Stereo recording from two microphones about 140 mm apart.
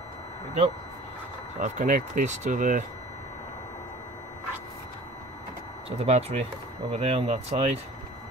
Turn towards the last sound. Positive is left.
turn(degrees=-45)  # may be behind; listen again after turning